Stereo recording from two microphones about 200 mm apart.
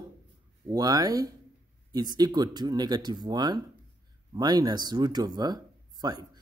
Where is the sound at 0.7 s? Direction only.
20° right (ahead or behind).